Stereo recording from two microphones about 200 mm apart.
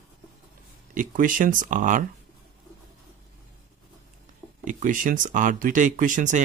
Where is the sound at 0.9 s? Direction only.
40° right (ahead or behind).